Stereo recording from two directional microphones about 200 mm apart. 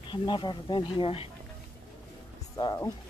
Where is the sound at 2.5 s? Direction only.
15° left (ahead or behind).